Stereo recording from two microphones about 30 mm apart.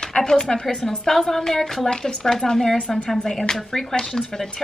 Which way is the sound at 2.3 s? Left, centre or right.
Centre.